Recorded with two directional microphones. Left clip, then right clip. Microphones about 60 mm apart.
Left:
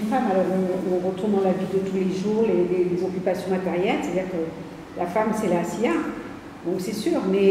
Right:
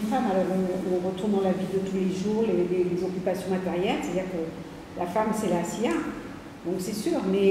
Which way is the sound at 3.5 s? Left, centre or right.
Centre.